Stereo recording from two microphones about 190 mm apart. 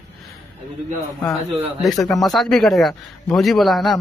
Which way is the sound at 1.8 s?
Centre (ahead or behind).